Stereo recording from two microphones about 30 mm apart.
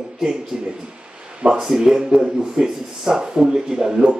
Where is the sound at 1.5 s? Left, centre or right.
Centre.